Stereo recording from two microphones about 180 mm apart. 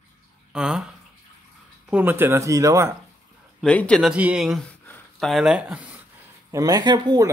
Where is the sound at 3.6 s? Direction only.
5° left (ahead or behind).